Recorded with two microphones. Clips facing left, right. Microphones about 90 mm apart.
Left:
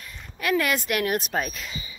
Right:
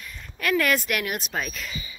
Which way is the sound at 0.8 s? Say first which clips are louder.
Left 3 dB; 30° left (ahead or behind).